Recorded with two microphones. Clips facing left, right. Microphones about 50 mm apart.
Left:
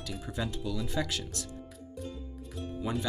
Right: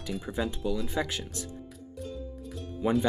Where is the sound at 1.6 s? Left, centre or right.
Centre.